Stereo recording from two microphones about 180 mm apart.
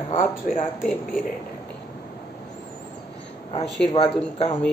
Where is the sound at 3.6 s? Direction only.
Centre (ahead or behind).